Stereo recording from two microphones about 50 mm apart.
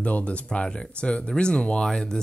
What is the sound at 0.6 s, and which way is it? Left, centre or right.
Speech, centre.